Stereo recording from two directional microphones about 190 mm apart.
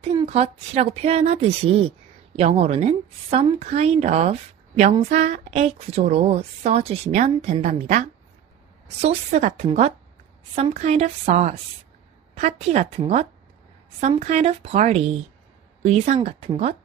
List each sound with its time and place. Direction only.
0.1 s speech: 30° right (ahead or behind)